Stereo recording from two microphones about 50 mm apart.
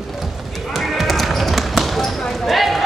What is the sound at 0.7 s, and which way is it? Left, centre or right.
Basketball bounce, centre.